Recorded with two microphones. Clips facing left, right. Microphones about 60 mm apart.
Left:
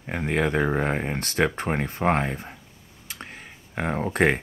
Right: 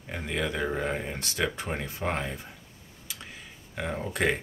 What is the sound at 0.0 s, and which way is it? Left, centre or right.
Speech, left.